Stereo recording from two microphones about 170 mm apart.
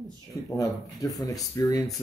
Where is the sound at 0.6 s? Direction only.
20° left (ahead or behind).